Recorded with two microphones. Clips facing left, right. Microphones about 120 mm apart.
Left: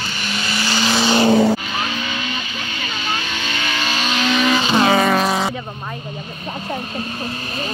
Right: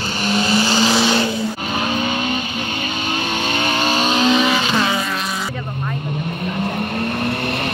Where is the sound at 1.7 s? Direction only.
45° right (ahead or behind).